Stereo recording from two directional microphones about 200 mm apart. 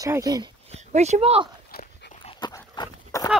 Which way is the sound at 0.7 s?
35° right (ahead or behind).